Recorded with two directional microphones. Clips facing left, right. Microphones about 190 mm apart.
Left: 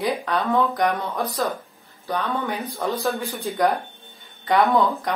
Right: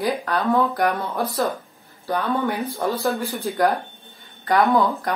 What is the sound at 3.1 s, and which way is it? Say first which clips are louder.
Speech: right 2 dB; centre (ahead or behind).